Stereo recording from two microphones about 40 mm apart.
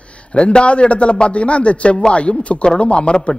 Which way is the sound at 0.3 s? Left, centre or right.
Left.